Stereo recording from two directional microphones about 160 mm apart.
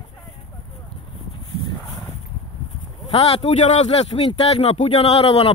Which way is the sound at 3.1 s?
40° left (ahead or behind).